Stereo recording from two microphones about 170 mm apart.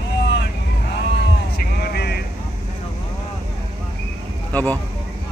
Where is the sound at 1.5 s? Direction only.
65° left (ahead or behind).